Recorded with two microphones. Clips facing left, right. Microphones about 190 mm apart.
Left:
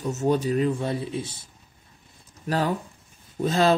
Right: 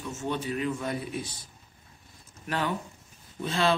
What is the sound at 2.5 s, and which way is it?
Speech, 35° left (ahead or behind).